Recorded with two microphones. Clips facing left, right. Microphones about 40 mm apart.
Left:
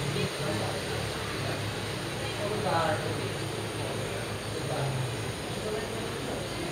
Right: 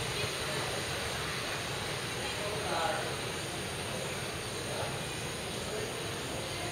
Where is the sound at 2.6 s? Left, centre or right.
Left.